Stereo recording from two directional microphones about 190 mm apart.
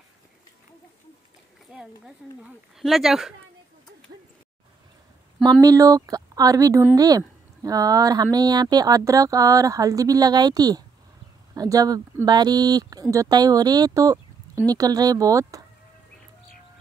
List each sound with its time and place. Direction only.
1.7 s speech: 5° right (ahead or behind)
5.5 s speech: 20° right (ahead or behind)